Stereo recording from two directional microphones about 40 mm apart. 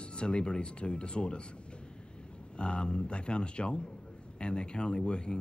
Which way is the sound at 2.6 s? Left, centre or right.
Left.